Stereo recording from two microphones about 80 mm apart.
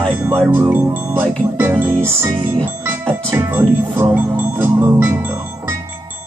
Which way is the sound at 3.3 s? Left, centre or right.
Right.